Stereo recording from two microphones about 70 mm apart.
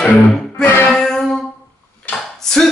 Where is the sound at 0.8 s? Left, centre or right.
Centre.